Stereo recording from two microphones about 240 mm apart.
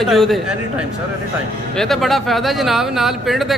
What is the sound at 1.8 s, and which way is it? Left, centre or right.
Speech, centre.